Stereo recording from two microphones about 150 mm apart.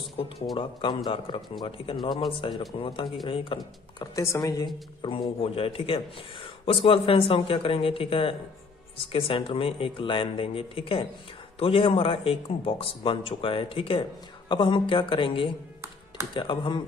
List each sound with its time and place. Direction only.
0.6 s a man's voice: 35° left (ahead or behind)
5.0 s a man's voice: 35° left (ahead or behind)